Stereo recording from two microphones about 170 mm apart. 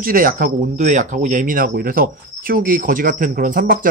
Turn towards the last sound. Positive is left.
turn(degrees=-55)  # may be behind; listen again after turning